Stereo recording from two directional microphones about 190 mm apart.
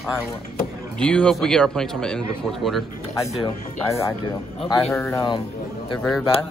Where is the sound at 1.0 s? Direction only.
5° left (ahead or behind).